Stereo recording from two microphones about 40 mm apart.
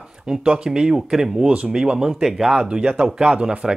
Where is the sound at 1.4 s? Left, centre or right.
Right.